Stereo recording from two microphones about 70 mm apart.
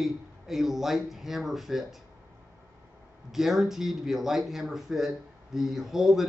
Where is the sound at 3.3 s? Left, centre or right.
Centre.